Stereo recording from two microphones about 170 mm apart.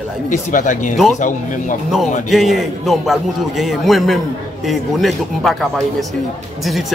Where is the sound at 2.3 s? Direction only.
Centre (ahead or behind).